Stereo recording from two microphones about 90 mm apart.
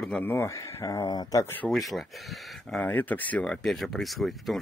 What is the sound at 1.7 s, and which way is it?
Speech, centre (ahead or behind).